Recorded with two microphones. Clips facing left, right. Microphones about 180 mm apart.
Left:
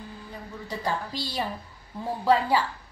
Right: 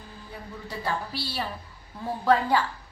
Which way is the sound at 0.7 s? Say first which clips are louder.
Left 1 dB; 15° left (ahead or behind).